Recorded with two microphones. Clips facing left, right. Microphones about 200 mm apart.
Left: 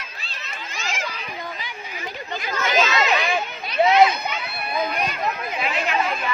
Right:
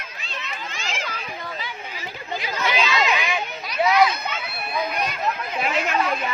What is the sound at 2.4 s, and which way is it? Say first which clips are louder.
Chatter: left 3 dB; 45° left (ahead or behind).